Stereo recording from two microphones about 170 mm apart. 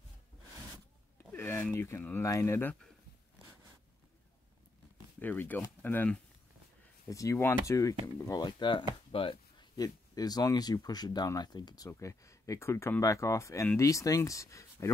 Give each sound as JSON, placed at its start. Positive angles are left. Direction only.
{"t": 1.3, "sound": "speech", "side_deg": 10}
{"t": 5.2, "sound": "speech", "side_deg": 10}